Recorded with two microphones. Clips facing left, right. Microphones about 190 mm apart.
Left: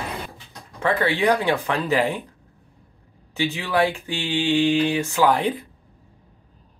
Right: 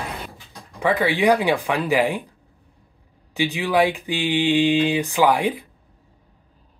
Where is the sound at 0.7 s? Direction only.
15° right (ahead or behind).